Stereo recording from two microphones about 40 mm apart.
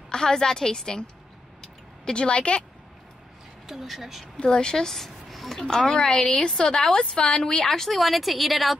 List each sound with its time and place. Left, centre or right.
0.1 s a woman's voice: centre
2.1 s a woman's voice: left
3.6 s a woman's voice: centre
4.6 s speech: centre
5.6 s a woman's voice: centre